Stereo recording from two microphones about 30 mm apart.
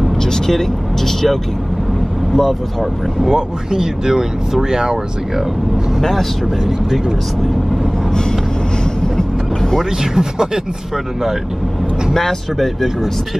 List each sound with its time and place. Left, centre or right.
0.2 s speech: centre
2.3 s speech: centre
3.3 s speech: centre
9.1 s vehicle: centre
10.1 s speech: centre
12.1 s speech: centre
12.5 s speech: centre